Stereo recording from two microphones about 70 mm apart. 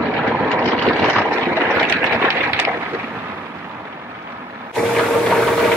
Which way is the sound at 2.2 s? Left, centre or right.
Right.